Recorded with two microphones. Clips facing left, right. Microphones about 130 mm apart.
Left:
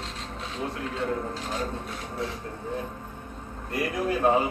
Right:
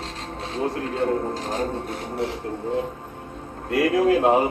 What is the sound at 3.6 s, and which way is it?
Speech, 90° right.